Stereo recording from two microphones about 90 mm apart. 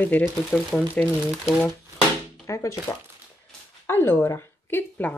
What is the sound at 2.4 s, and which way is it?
Shuffling cards, 35° left (ahead or behind).